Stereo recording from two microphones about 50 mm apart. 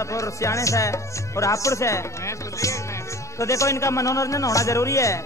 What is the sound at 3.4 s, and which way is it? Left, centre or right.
A man's voice, left.